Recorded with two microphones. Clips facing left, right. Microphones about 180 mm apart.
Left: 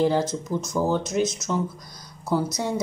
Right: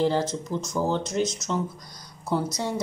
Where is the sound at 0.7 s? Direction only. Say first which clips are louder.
Left 2 dB; 10° left (ahead or behind).